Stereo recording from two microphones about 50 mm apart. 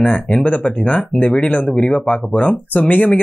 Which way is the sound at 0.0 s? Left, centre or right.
Left.